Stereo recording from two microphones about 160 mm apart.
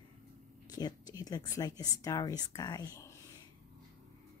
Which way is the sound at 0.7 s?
25° left (ahead or behind).